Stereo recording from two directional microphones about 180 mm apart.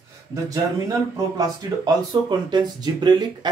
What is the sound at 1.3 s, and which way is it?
Speech, 25° right (ahead or behind).